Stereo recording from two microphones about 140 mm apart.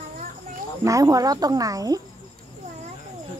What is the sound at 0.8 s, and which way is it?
Speech, 25° right (ahead or behind).